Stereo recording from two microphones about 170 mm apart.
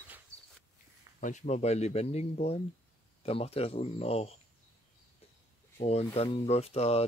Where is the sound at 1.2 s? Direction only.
45° left (ahead or behind).